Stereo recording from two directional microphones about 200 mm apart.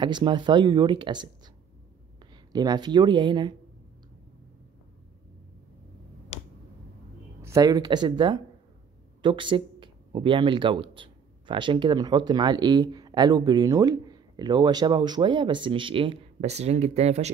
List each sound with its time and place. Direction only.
0.0 s speech: 25° right (ahead or behind)
2.5 s speech: 20° right (ahead or behind)
6.3 s finger snapping: 30° left (ahead or behind)
7.4 s speech: 15° right (ahead or behind); by 17.3 s 35° right (ahead or behind)